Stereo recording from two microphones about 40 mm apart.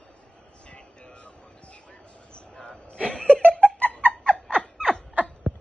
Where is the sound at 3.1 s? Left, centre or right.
Left.